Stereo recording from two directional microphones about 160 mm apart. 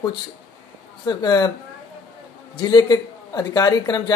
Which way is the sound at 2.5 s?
25° left (ahead or behind).